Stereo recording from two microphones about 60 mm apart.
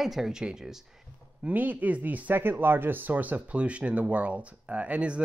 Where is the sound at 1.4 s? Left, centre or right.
Right.